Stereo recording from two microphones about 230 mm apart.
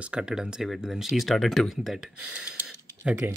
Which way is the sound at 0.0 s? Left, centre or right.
Centre.